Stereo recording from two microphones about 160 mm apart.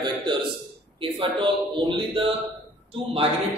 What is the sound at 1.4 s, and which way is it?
Speech, 30° right (ahead or behind).